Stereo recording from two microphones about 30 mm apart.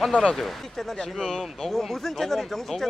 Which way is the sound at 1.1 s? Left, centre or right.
Left.